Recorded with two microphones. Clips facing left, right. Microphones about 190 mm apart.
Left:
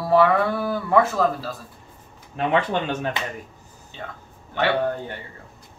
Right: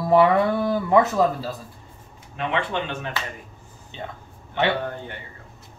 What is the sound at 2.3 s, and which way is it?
Speech, 40° left (ahead or behind).